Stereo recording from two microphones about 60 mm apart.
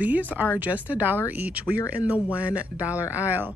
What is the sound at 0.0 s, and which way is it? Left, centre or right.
Speech, right.